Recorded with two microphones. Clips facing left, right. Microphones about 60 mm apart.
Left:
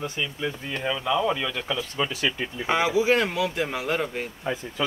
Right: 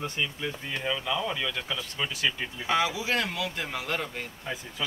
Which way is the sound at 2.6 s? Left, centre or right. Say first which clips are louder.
Left 5 dB; left.